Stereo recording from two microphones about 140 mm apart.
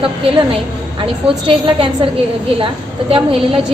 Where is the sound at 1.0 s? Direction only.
35° right (ahead or behind).